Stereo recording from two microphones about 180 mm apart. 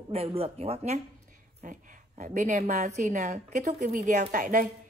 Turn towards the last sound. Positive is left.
turn(degrees=-45)  # may be behind; listen again after turning